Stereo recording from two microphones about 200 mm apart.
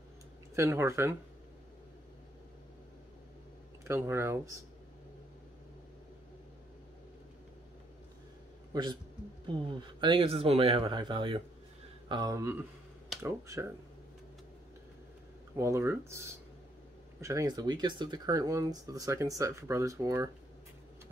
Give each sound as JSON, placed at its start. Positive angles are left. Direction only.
{"t": 0.6, "sound": "speech", "side_deg": -15}
{"t": 3.8, "sound": "speech", "side_deg": -10}
{"t": 8.7, "sound": "speech", "side_deg": -20}
{"t": 15.5, "sound": "speech", "side_deg": -15}